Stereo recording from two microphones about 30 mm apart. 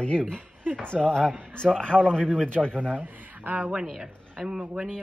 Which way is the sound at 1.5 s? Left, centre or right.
Left.